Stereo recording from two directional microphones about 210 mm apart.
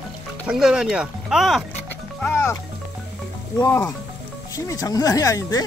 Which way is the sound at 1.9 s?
10° left (ahead or behind).